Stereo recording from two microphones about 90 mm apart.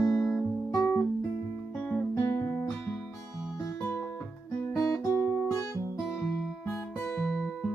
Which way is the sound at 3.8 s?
25° left (ahead or behind).